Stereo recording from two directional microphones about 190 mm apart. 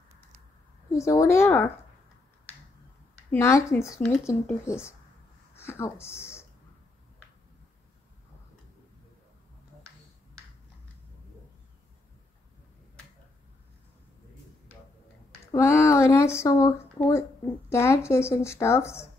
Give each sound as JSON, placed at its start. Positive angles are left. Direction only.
{"t": 0.9, "sound": "speech", "side_deg": 15}
{"t": 3.3, "sound": "speech", "side_deg": 15}
{"t": 15.4, "sound": "speech", "side_deg": 15}